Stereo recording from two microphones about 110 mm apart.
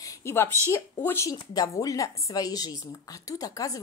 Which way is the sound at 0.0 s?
25° left (ahead or behind).